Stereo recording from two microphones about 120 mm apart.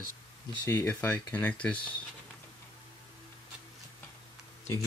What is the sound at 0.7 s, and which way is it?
Speech, 20° left (ahead or behind).